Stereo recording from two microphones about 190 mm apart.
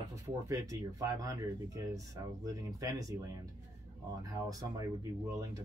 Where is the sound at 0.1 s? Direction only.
15° right (ahead or behind).